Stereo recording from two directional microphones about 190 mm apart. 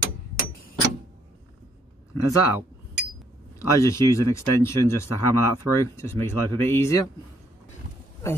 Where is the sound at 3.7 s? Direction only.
15° left (ahead or behind).